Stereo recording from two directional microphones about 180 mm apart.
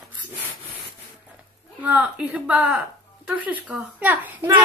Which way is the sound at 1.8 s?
5° right (ahead or behind).